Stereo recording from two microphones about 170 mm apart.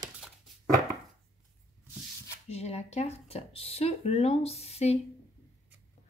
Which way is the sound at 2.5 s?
40° left (ahead or behind).